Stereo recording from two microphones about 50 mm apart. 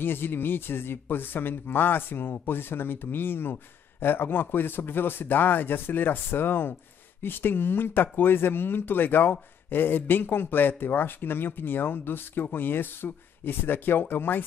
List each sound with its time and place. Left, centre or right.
0.0 s speech: left